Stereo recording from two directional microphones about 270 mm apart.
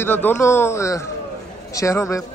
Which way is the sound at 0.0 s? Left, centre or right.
Centre.